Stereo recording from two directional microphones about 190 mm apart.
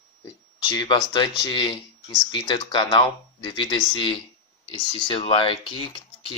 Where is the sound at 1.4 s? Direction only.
25° left (ahead or behind).